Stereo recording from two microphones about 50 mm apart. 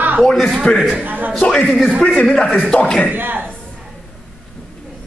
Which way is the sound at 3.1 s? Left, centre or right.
Right.